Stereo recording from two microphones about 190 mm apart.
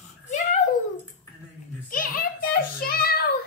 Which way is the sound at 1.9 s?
50° left (ahead or behind).